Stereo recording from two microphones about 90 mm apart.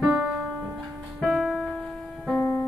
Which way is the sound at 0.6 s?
20° right (ahead or behind).